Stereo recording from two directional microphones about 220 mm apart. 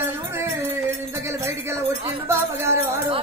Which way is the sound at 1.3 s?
10° right (ahead or behind).